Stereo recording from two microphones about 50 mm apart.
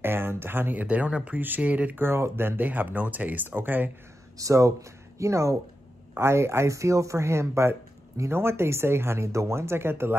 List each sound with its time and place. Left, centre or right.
0.0 s speech: right
0.8 s speech: right
2.0 s speech: right
4.5 s speech: right
6.1 s speech: right
8.3 s speech: right